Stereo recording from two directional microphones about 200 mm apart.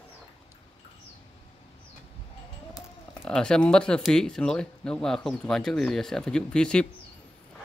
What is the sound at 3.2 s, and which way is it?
Speech, 5° left (ahead or behind).